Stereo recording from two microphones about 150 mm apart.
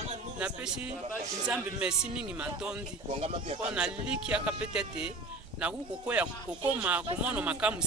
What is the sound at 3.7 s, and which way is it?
Speech, 5° right (ahead or behind).